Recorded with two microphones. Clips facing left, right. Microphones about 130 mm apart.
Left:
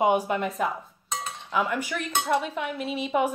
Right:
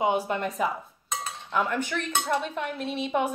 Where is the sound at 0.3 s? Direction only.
Centre (ahead or behind).